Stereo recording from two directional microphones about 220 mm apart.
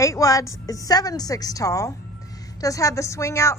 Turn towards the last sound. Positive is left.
turn(degrees=15)  # may be behind; listen again after turning